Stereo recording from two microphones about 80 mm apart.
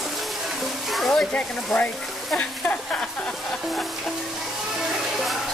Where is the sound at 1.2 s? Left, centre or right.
Centre.